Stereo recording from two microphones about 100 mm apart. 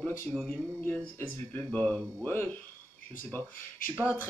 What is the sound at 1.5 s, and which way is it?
Speech, 15° left (ahead or behind).